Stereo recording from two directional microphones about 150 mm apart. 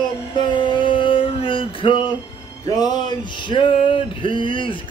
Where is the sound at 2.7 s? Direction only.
25° left (ahead or behind).